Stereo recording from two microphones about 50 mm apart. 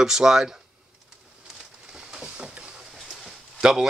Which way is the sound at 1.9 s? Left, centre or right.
Centre.